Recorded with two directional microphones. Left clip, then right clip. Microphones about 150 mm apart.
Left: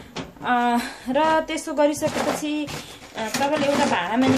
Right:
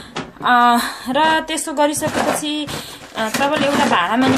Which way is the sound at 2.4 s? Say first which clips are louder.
Right 4 dB; centre (ahead or behind).